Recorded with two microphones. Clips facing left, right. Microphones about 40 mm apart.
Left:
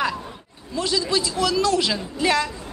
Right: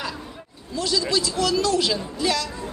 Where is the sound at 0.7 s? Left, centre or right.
Left.